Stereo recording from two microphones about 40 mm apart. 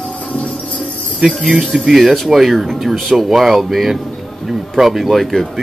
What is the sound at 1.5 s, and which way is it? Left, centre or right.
Speech, centre.